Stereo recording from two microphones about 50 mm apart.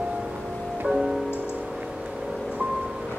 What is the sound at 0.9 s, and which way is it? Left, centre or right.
Music, centre.